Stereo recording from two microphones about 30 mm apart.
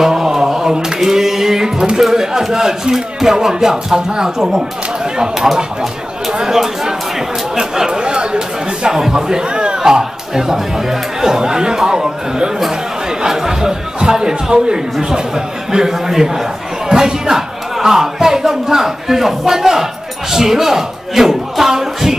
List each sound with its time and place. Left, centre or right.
0.0 s mantra: centre
1.0 s music: centre
2.0 s speech: centre
6.9 s chatter: right
9.1 s a man's voice: right